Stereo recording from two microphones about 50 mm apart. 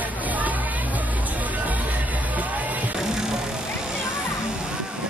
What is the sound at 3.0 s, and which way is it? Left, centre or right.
Music, centre.